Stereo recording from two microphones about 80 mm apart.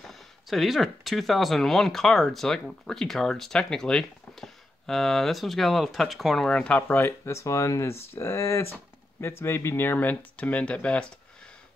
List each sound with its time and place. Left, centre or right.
0.0 s speech: centre
6.9 s speech: left; by 11.1 s centre